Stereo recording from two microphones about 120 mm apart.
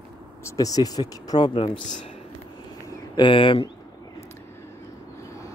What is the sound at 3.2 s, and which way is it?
Speech, 45° left (ahead or behind).